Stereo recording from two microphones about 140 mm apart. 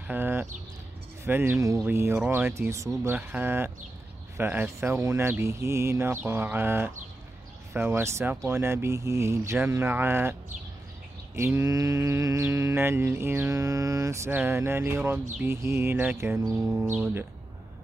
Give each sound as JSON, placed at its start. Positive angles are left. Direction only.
{"t": 0.0, "sound": "speech", "side_deg": -15}
{"t": 4.4, "sound": "mantra", "side_deg": -15}
{"t": 6.2, "sound": "speech", "side_deg": -15}
{"t": 8.5, "sound": "mantra", "side_deg": -20}
{"t": 9.7, "sound": "speech", "side_deg": -15}
{"t": 11.3, "sound": "mantra", "side_deg": -20}
{"t": 15.3, "sound": "speech", "side_deg": -15}